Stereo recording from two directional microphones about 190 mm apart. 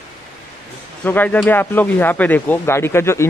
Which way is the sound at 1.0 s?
10° left (ahead or behind).